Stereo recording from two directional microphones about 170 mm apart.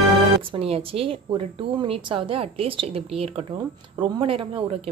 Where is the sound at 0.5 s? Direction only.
35° right (ahead or behind).